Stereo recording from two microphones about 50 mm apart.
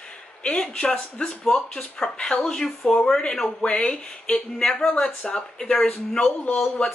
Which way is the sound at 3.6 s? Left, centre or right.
Left.